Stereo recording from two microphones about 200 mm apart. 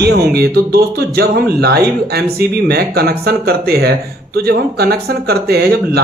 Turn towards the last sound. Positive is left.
turn(degrees=-55)  # may be behind; listen again after turning